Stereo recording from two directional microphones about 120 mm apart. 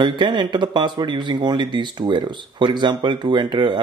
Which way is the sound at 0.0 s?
40° right (ahead or behind).